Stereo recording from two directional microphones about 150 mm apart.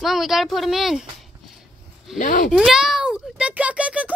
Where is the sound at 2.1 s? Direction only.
65° left (ahead or behind).